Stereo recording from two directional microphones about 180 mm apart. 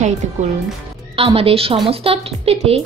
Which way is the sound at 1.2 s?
30° right (ahead or behind).